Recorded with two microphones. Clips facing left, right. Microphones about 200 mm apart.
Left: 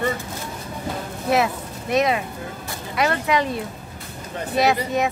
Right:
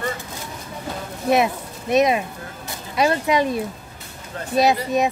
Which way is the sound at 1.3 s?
20° right (ahead or behind).